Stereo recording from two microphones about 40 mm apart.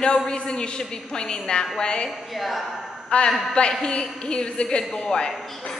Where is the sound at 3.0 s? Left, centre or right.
Left.